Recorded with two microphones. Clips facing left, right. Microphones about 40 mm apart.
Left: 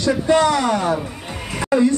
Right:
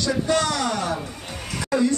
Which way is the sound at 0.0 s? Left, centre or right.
Left.